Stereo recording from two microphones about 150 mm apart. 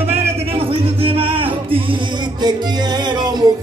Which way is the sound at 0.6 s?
40° right (ahead or behind).